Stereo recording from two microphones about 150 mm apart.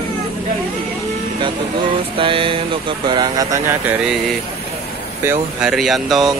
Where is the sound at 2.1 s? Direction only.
35° right (ahead or behind); by 4.4 s 5° right (ahead or behind).